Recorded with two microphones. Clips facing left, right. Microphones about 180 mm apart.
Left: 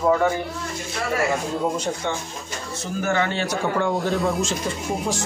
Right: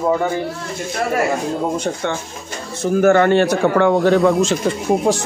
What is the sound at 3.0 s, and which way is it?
A man's voice, 50° right (ahead or behind).